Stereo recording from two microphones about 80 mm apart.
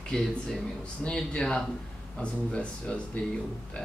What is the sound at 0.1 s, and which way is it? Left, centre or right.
Speech, centre.